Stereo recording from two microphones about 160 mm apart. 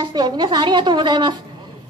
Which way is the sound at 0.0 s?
25° right (ahead or behind).